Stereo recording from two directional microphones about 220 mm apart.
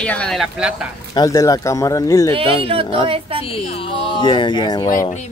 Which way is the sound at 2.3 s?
25° right (ahead or behind).